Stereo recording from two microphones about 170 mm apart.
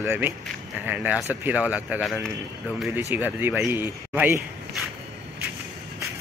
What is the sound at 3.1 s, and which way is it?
Speech, 10° right (ahead or behind).